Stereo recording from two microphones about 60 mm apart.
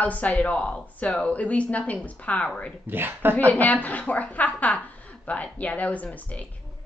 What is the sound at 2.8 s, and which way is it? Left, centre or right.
Speech, right.